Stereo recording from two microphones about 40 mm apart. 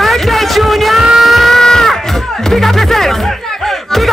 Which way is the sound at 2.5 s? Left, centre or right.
Centre.